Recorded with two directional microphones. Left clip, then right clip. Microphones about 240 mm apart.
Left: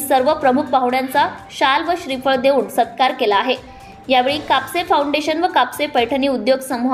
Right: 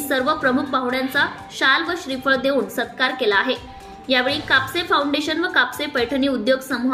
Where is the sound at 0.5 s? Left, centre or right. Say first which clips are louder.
Left 5 dB; centre.